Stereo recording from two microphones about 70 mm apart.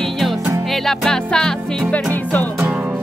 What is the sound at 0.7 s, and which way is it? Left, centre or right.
Music, centre.